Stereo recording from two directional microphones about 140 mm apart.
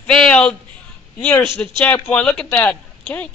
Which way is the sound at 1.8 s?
15° left (ahead or behind).